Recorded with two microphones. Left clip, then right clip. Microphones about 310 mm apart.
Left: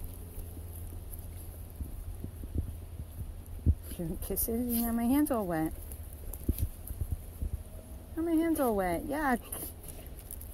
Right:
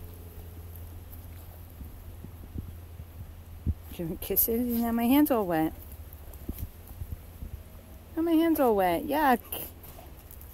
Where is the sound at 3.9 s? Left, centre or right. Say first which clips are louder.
Right 7 dB; centre.